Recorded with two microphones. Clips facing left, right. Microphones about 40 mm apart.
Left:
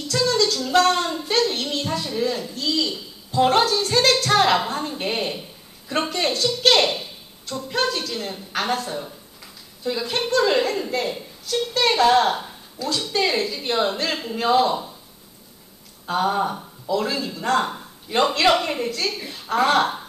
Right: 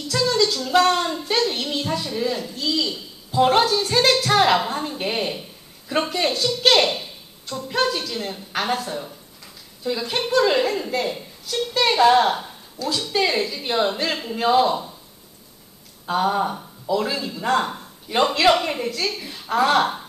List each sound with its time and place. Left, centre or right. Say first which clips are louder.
0.0 s speech: even; centre
16.1 s speech: right 1 dB; centre